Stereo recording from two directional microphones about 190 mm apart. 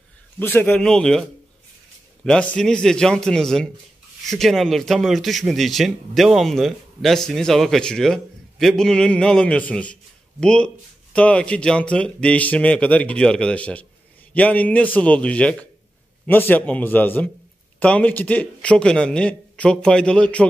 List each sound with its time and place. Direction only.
0.4 s speech: 10° left (ahead or behind)
2.2 s speech: 5° left (ahead or behind)